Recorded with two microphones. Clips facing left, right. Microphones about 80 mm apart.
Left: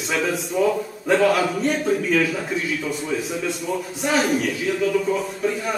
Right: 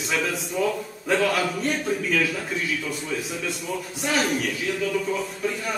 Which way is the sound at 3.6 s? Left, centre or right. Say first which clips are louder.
Left 4 dB; centre.